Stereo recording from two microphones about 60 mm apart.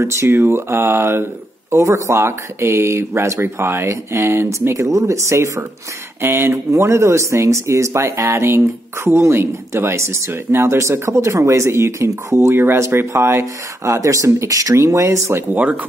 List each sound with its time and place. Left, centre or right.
0.0 s speech: right
15.5 s speech: right